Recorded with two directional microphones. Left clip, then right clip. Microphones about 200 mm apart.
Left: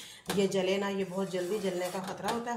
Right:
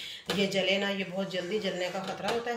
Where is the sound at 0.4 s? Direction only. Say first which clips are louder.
Right 1 dB; 50° left (ahead or behind).